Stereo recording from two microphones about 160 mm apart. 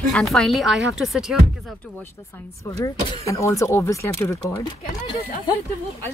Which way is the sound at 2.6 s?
20° left (ahead or behind).